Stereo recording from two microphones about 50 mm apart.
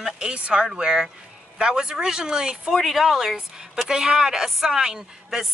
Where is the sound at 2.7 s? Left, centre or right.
Centre.